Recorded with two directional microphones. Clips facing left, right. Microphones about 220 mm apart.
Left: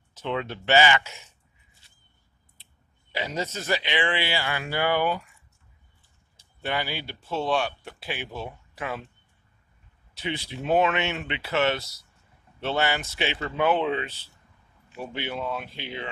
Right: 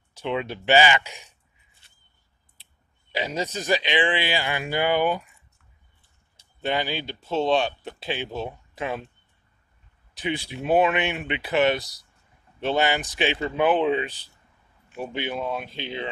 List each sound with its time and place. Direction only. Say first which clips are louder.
0.1 s a man's voice: right 2 dB; 15° right (ahead or behind)
3.1 s a man's voice: right 2 dB; 15° right (ahead or behind)
6.6 s speech: right 4 dB; 20° right (ahead or behind)
10.1 s a man's voice: right 3 dB; 15° right (ahead or behind)